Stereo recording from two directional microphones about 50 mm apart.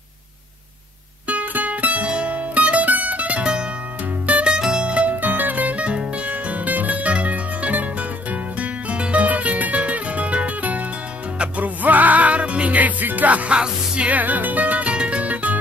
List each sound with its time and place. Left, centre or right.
1.2 s music: right
4.6 s music: centre
5.3 s music: right
14.1 s music: right